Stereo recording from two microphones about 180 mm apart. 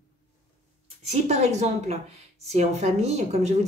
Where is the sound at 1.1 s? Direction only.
35° right (ahead or behind).